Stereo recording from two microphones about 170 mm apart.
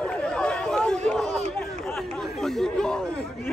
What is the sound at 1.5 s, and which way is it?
Chatter, centre (ahead or behind).